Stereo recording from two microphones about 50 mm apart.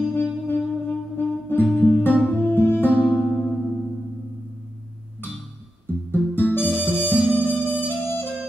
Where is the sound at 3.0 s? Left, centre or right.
Left.